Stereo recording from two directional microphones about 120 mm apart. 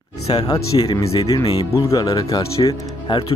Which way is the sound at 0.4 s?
35° left (ahead or behind).